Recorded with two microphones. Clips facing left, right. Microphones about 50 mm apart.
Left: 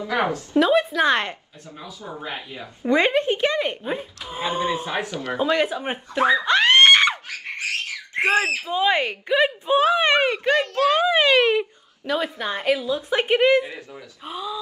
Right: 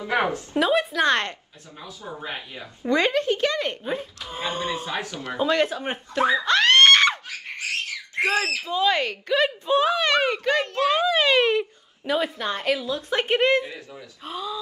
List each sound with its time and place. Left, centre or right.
0.0 s a woman's voice: right
0.6 s a woman's voice: centre
2.9 s speech: left
4.9 s a child's voice: left
5.4 s speech: centre
6.4 s screaming: centre
7.2 s speech: left
10.7 s a child's voice: right
11.0 s a child's voice: left
12.0 s a woman's voice: centre
12.4 s speech: centre